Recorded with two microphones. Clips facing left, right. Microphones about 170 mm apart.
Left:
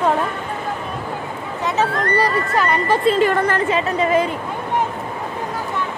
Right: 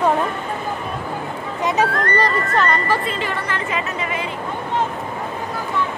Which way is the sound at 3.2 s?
50° left (ahead or behind).